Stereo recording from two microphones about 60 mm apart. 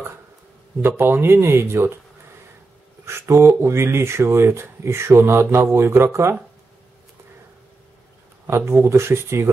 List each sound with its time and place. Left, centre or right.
0.8 s speech: right
3.1 s speech: right
8.5 s speech: right